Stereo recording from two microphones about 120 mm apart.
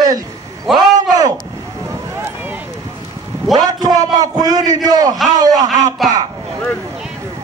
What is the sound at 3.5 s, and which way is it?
A man's voice, 30° right (ahead or behind).